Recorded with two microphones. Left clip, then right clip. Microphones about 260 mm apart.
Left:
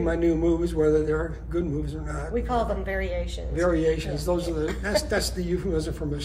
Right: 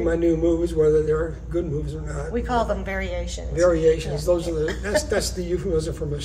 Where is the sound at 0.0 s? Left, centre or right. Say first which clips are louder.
Right 3 dB; centre.